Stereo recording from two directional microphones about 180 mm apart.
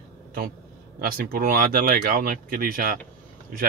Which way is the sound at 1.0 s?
55° right (ahead or behind).